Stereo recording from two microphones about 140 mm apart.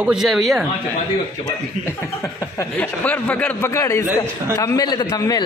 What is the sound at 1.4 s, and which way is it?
A man's voice, 20° left (ahead or behind).